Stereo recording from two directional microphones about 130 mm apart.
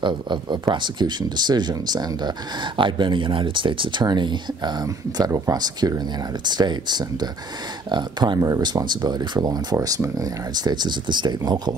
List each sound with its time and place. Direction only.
0.0 s speech: 35° right (ahead or behind)